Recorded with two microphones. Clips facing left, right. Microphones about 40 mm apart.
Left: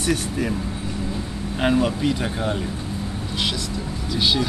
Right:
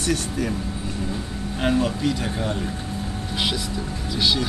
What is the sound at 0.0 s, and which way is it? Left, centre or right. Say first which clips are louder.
Speech: left 1 dB; centre.